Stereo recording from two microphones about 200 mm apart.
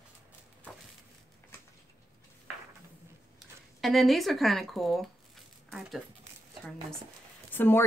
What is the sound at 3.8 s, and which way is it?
Speech, centre (ahead or behind).